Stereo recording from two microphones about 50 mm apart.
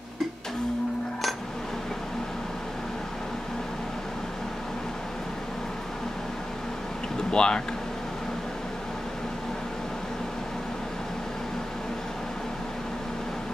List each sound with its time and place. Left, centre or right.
7.2 s speech: centre